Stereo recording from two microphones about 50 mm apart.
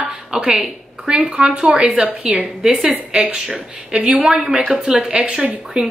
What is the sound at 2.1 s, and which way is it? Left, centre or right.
Speech, right.